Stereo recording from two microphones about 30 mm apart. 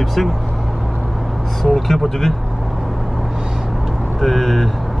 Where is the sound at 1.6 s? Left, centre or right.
Centre.